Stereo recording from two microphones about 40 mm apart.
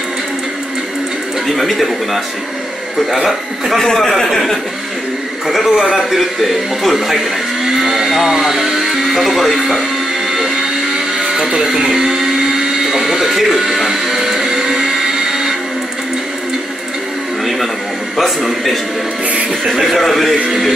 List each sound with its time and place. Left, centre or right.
1.5 s speech: centre
3.7 s a man's voice: centre
4.3 s speech: centre
10.3 s blender: centre
18.1 s speech: centre